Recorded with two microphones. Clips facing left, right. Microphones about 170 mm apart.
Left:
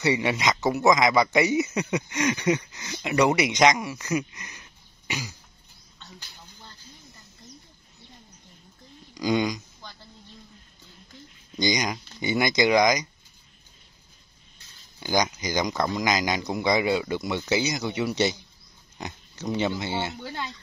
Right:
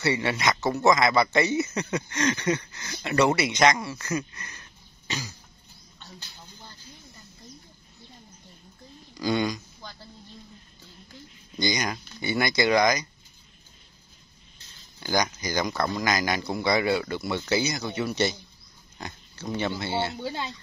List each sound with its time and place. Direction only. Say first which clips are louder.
0.0 s speech: left 1 dB; 15° left (ahead or behind)
9.1 s speech: left 1 dB; 15° left (ahead or behind)
11.5 s speech: left 2 dB; 15° left (ahead or behind)
15.0 s speech: left 1 dB; 15° left (ahead or behind)
20.2 s speech: right 3 dB; 15° right (ahead or behind)